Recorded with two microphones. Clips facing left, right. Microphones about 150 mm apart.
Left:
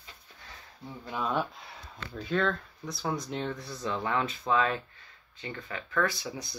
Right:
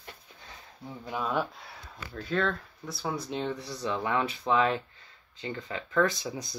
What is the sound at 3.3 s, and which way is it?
Speech, 10° right (ahead or behind).